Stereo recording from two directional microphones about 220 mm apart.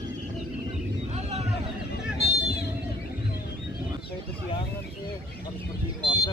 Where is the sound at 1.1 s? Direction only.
30° right (ahead or behind).